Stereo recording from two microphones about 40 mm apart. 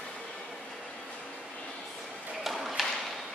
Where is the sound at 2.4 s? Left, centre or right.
Centre.